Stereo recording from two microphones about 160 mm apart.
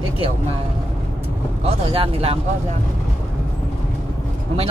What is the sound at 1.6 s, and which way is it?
Speech, 35° right (ahead or behind).